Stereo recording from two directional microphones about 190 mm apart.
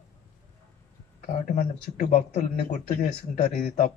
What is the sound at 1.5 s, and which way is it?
A man's voice, 40° left (ahead or behind).